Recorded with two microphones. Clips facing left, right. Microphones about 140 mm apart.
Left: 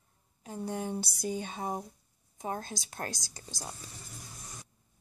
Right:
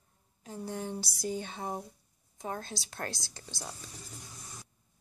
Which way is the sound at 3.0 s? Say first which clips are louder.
Even; 45° left (ahead or behind).